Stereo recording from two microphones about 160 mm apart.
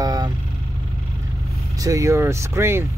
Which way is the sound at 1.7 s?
20° right (ahead or behind).